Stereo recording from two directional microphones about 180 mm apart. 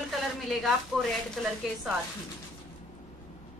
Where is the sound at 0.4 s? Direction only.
Centre (ahead or behind).